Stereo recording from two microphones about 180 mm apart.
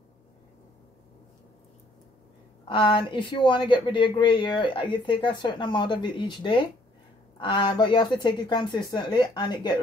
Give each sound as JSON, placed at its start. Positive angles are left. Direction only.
{"t": 2.7, "sound": "speech", "side_deg": 25}